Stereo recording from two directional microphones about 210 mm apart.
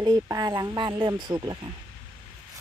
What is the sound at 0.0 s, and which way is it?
Speech, 20° right (ahead or behind).